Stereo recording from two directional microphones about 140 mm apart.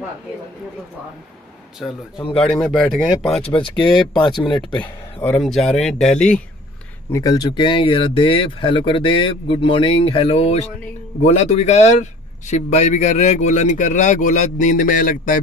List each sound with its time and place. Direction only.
1.8 s speech: centre (ahead or behind)
3.4 s speech: 40° left (ahead or behind)
5.4 s speech: centre (ahead or behind)
7.1 s speech: 25° left (ahead or behind); by 15.4 s 75° left (ahead or behind)